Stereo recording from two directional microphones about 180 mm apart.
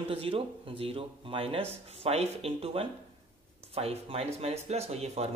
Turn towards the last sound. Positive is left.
turn(degrees=-35)  # may be behind; listen again after turning